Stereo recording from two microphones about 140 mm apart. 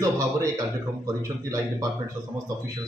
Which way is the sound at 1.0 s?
25° right (ahead or behind).